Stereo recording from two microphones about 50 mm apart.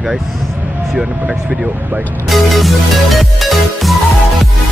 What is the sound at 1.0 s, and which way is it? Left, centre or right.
Speech, right.